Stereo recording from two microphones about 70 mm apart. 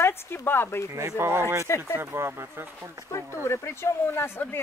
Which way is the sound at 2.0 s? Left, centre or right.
Right.